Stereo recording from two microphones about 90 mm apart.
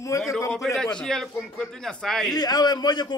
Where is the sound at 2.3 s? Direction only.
45° left (ahead or behind).